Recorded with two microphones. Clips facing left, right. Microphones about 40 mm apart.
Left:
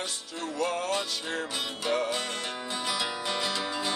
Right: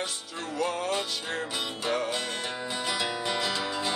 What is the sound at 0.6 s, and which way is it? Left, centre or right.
Music, centre.